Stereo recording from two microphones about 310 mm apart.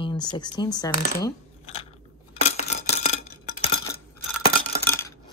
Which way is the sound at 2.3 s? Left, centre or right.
Left.